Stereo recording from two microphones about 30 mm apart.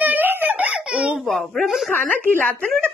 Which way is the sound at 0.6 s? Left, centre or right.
Right.